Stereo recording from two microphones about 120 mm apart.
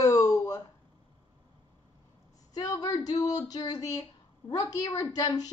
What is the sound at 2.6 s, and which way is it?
A woman's voice, 30° left (ahead or behind).